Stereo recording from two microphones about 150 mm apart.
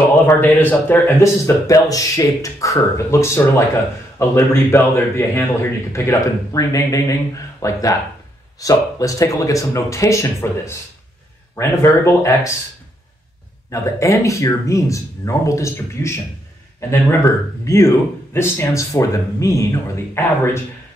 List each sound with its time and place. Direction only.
0.3 s speech: 15° left (ahead or behind)
13.7 s speech: 20° left (ahead or behind)